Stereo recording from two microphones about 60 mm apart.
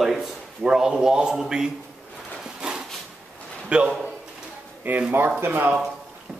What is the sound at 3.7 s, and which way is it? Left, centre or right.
Speech, centre.